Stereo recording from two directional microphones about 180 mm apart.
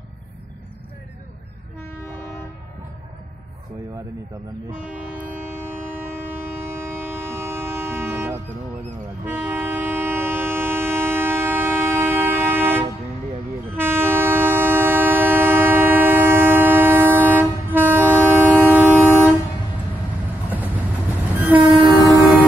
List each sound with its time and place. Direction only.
4.8 s train: 10° right (ahead or behind)
20.4 s vehicle: 10° right (ahead or behind)
21.4 s train: 10° right (ahead or behind)